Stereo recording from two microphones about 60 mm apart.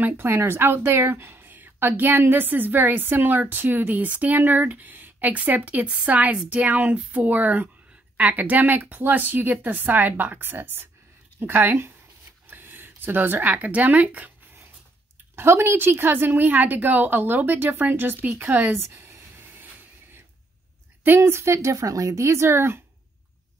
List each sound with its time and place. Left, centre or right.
0.0 s a woman's voice: right
15.3 s a woman's voice: right
18.8 s a sound: right
21.2 s speech: right